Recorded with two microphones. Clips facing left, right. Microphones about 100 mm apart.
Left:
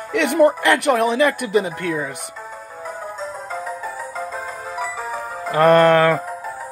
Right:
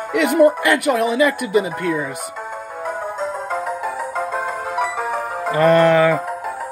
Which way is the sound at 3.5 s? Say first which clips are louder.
Right 5 dB; 45° right (ahead or behind).